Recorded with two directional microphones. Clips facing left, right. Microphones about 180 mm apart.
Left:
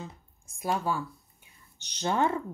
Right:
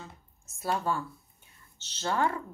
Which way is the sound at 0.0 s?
15° left (ahead or behind).